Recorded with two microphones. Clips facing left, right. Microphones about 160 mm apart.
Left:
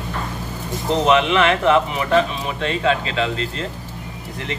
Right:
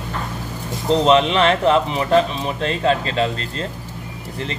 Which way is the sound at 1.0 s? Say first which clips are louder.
Right 1 dB; 35° right (ahead or behind).